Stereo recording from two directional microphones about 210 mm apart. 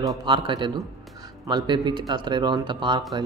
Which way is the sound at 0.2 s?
25° right (ahead or behind).